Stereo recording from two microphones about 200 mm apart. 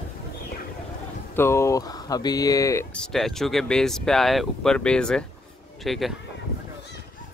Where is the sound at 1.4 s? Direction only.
15° left (ahead or behind).